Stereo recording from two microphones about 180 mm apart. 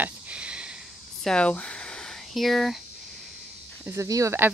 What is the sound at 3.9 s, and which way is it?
Speech, 15° right (ahead or behind).